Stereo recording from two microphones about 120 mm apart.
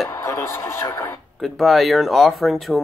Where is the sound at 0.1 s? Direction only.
25° left (ahead or behind).